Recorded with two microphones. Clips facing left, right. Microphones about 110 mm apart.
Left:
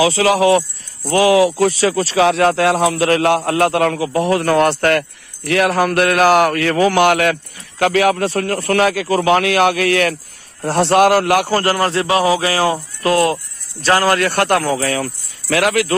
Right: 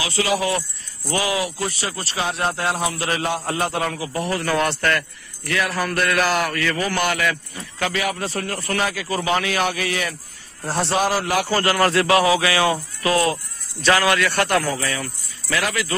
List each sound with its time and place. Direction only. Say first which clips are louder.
0.2 s speech: left 4 dB; 80° left
1.1 s speech: left 11 dB; 90° left; by 11.4 s 65° left (ahead or behind)
11.4 s speech: left 4 dB; 45° left (ahead or behind)
11.8 s a sound: left 1 dB; 25° left (ahead or behind)
13.0 s speech: left 5 dB; 45° left (ahead or behind); by 15.9 s 65° left (ahead or behind)